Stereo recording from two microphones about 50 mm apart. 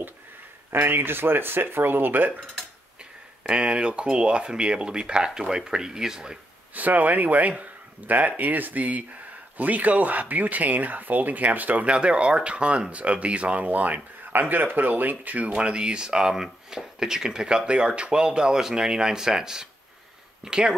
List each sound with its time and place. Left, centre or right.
0.7 s speech: right
3.4 s speech: centre
6.7 s speech: right; by 20.7 s centre